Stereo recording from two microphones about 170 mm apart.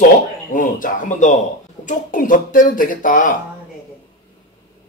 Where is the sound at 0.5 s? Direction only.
50° left (ahead or behind).